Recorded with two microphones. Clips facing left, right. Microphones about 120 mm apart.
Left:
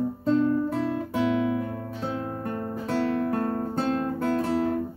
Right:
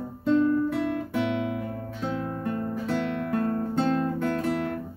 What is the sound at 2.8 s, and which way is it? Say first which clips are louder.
Music: left 6 dB; 35° left (ahead or behind).